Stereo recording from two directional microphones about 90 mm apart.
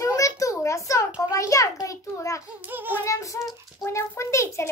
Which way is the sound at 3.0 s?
35° left (ahead or behind).